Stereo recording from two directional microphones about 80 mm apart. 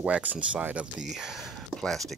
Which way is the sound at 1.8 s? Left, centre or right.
Centre.